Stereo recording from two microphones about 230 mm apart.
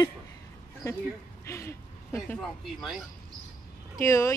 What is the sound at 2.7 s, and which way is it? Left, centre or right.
Speech, centre.